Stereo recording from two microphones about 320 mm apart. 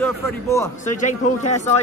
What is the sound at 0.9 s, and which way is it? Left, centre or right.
Speech, left.